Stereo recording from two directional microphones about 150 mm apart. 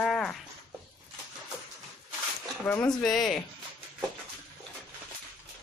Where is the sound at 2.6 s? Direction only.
10° left (ahead or behind).